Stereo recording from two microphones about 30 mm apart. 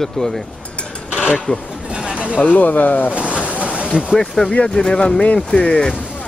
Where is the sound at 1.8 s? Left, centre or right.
Right.